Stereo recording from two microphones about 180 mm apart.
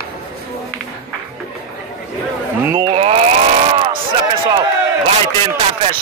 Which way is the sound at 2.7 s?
25° right (ahead or behind).